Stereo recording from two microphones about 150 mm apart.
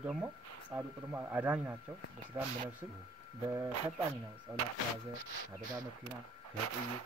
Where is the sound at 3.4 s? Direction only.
15° right (ahead or behind).